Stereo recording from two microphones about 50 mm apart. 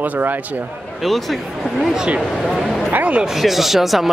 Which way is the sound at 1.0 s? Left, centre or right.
Centre.